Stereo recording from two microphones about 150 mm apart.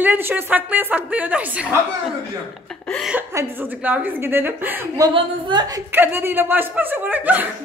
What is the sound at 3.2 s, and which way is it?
Speech, 15° right (ahead or behind).